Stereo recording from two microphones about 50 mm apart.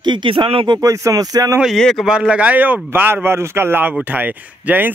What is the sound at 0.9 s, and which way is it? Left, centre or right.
Speech, right.